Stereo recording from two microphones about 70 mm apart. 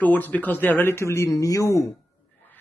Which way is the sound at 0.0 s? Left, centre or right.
Left.